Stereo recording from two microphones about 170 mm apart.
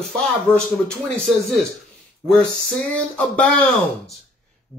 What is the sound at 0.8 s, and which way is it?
Speech, centre (ahead or behind).